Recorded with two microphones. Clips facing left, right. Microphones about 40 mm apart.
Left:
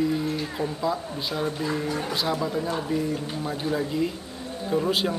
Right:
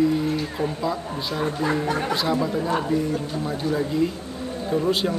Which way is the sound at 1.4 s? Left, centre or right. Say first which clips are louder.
Right 4 dB; right.